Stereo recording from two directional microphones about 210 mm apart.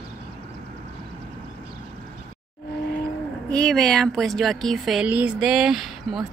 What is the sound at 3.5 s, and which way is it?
Speech, 5° left (ahead or behind).